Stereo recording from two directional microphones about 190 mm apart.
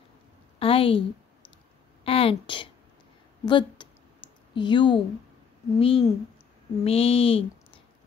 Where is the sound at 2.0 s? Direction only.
30° left (ahead or behind).